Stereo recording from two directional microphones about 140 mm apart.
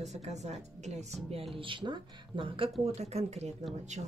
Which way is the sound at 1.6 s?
35° right (ahead or behind).